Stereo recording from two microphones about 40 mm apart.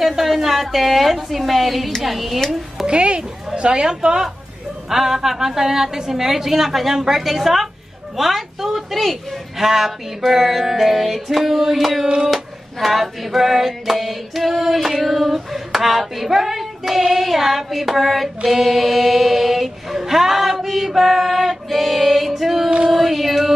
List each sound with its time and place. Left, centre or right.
0.2 s music: centre
2.9 s a woman's voice: right; by 7.7 s centre
8.2 s music: centre
22.8 s female singing: centre